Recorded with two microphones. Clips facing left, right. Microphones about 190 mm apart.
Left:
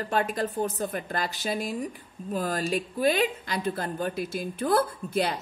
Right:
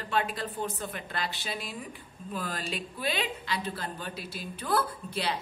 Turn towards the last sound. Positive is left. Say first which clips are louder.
# left 5 dB
turn(degrees=50)  # may be behind; listen again after turning